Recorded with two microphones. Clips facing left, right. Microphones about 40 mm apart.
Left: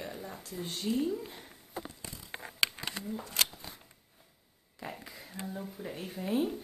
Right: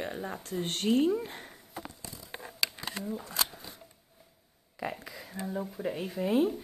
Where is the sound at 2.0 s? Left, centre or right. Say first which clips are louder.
Even; left.